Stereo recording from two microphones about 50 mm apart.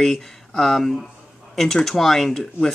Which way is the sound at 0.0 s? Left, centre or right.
Centre.